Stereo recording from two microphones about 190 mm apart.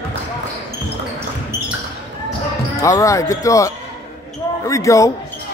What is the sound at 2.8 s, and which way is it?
Speech, 15° left (ahead or behind).